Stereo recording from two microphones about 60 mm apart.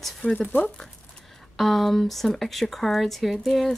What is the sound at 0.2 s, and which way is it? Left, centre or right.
Speech, centre.